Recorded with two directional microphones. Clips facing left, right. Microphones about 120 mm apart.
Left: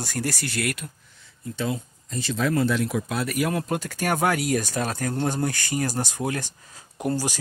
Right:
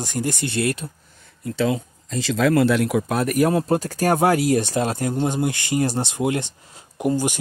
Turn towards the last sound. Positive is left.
turn(degrees=-20)  # may be behind; listen again after turning